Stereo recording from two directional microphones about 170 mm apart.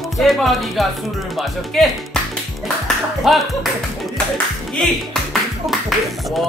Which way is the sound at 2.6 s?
Centre (ahead or behind).